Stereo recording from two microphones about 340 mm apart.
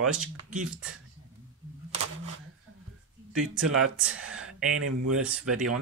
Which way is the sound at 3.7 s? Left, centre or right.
Right.